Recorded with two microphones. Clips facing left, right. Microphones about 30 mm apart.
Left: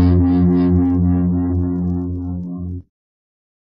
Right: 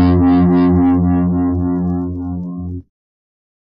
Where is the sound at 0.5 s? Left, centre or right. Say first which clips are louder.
Right 4 dB; centre.